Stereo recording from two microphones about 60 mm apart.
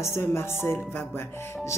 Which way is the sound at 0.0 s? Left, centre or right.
Left.